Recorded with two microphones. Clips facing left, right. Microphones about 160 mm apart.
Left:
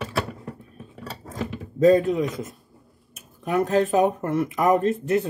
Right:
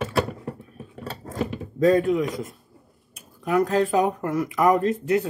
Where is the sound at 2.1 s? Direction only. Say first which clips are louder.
Right 1 dB; 25° left (ahead or behind).